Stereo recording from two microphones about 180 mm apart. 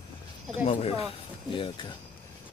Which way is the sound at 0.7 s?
35° left (ahead or behind).